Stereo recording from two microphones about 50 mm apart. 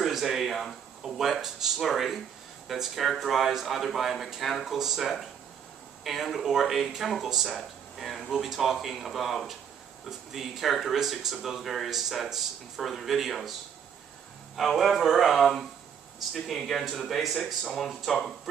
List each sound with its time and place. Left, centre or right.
0.0 s speech: centre